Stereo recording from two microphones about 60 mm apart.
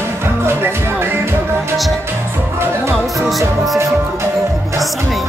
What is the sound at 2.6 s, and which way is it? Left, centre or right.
Music, right.